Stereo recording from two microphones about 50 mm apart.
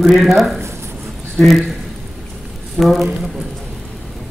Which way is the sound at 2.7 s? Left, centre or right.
Centre.